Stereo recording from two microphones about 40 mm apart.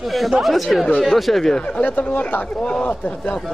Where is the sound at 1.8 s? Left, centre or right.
Left.